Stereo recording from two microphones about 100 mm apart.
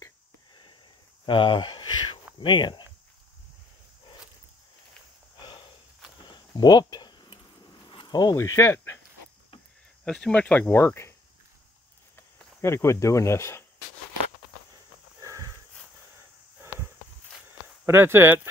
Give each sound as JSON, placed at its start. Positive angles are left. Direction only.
{"t": 1.2, "sound": "speech", "side_deg": 55}
{"t": 5.4, "sound": "a sound", "side_deg": 45}
{"t": 8.4, "sound": "speech", "side_deg": 30}
{"t": 10.0, "sound": "speech", "side_deg": 10}
{"t": 12.6, "sound": "speech", "side_deg": 25}
{"t": 15.2, "sound": "a sound", "side_deg": -35}
{"t": 17.8, "sound": "speech", "side_deg": -25}